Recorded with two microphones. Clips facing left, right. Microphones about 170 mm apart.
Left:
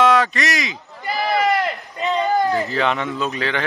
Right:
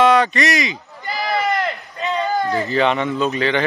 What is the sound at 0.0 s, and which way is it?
Speech, centre (ahead or behind).